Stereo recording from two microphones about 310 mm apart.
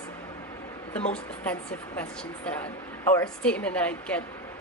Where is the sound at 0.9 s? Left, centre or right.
Centre.